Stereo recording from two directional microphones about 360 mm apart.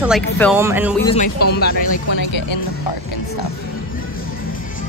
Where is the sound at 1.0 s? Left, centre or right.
Centre.